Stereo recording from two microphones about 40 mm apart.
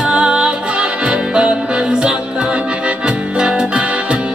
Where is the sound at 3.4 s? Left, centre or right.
Right.